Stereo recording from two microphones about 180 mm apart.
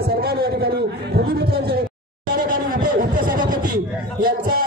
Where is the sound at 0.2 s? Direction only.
60° right (ahead or behind).